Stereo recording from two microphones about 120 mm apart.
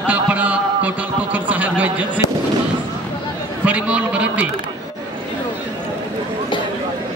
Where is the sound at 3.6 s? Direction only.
10° right (ahead or behind).